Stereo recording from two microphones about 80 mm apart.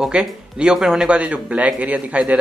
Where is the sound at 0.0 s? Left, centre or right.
Centre.